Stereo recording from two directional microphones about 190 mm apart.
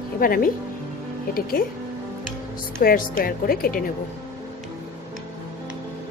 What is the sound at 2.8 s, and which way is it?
A woman's voice, 50° left (ahead or behind).